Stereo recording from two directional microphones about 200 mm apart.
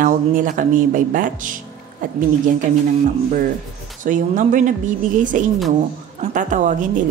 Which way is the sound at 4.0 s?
40° right (ahead or behind).